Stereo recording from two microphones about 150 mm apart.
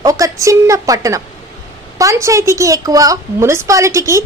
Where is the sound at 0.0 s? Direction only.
20° right (ahead or behind).